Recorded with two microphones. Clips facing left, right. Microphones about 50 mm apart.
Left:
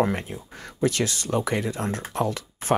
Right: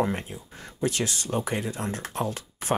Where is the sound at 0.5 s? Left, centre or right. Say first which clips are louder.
Left 4 dB; left.